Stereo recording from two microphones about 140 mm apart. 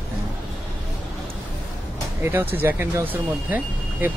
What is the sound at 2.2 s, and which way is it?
Speech, 15° right (ahead or behind).